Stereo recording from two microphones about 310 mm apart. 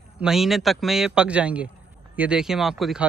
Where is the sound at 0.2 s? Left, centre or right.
Centre.